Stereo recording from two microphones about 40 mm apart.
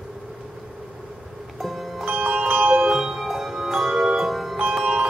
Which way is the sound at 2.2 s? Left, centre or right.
Right.